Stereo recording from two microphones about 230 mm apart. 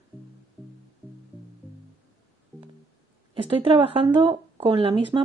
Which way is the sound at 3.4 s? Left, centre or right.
Right.